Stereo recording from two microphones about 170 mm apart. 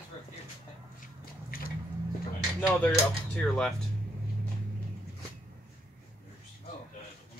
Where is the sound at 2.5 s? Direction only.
5° left (ahead or behind).